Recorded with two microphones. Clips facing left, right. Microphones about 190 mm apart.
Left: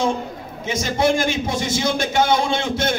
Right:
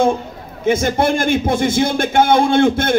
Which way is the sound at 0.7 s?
55° right (ahead or behind).